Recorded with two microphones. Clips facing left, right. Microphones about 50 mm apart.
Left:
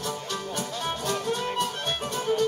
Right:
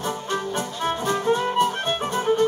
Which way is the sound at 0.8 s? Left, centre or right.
Right.